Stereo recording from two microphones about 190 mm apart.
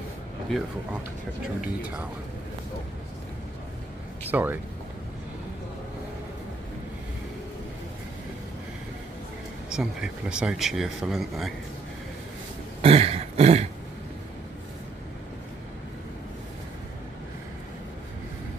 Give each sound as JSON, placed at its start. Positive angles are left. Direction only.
{"t": 1.4, "sound": "speech", "side_deg": -5}
{"t": 4.3, "sound": "speech", "side_deg": -10}
{"t": 9.7, "sound": "speech", "side_deg": -5}
{"t": 12.8, "sound": "throat clearing", "side_deg": -30}